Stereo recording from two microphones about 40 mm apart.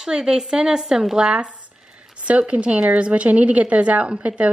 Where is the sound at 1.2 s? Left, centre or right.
Right.